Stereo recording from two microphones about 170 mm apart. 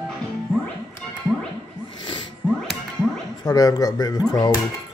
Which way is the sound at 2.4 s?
5° left (ahead or behind).